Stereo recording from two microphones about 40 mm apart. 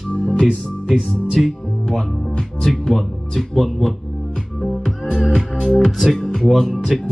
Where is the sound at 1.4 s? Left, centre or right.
Centre.